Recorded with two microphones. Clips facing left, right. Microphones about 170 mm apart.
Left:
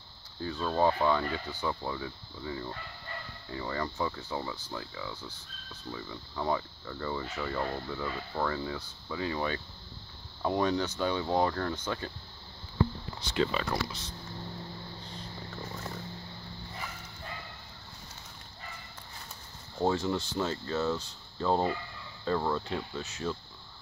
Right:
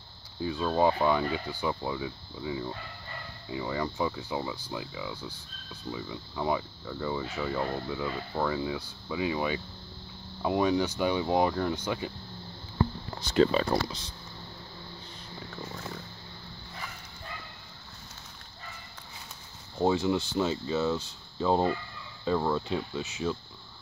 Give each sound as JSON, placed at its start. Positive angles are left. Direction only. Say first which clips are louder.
{"t": 0.4, "sound": "speech", "louder": "right 2 dB", "side_deg": -10}
{"t": 13.2, "sound": "speech", "louder": "right 6 dB", "side_deg": -40}
{"t": 19.8, "sound": "speech", "louder": "right 3 dB", "side_deg": -15}